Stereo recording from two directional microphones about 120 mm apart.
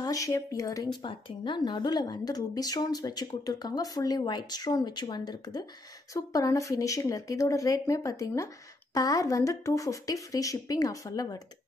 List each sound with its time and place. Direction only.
0.0 s speech: 30° left (ahead or behind)
1.0 s speech: 40° left (ahead or behind)